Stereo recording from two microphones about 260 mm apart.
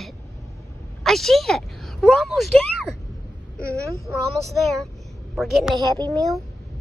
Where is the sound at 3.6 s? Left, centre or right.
Centre.